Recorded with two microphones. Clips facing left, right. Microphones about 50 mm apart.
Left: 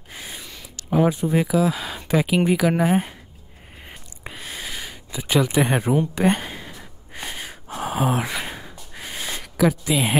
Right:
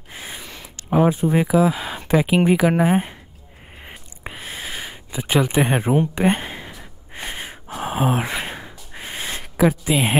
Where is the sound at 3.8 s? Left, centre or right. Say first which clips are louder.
Right 3 dB; centre.